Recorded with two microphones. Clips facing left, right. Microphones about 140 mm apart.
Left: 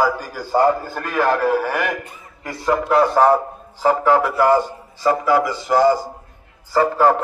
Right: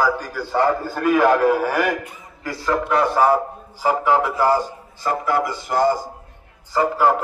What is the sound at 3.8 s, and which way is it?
Speech, 15° right (ahead or behind).